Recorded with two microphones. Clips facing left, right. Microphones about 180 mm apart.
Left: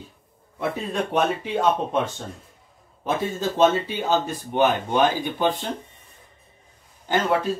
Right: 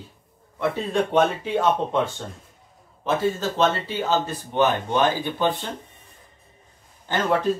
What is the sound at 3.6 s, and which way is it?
Speech, 15° left (ahead or behind).